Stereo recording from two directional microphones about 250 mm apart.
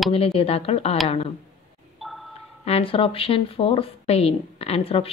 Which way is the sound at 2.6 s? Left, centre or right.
Left.